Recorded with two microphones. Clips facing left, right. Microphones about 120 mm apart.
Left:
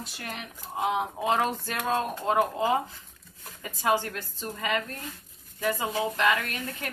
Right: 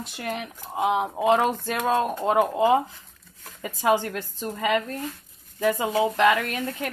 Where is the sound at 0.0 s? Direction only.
20° right (ahead or behind).